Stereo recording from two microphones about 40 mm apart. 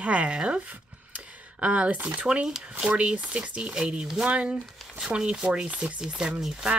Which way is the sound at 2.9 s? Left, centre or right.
Right.